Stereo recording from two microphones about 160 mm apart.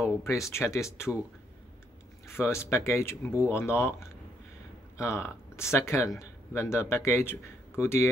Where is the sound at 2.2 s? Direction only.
15° left (ahead or behind).